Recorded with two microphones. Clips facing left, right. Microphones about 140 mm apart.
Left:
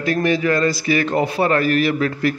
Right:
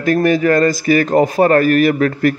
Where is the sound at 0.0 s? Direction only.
45° right (ahead or behind).